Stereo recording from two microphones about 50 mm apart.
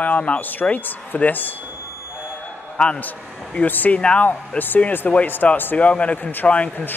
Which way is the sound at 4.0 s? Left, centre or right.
Left.